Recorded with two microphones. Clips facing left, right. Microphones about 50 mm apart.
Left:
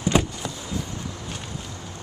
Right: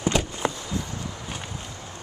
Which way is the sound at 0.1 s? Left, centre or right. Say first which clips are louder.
Left 4 dB; centre.